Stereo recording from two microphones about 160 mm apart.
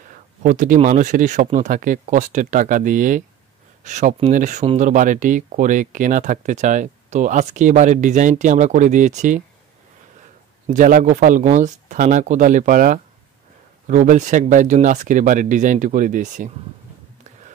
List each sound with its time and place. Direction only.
0.4 s speech: 55° right (ahead or behind)
10.7 s speech: 55° right (ahead or behind)